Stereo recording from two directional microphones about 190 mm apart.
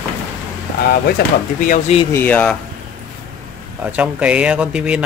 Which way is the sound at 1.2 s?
60° left (ahead or behind).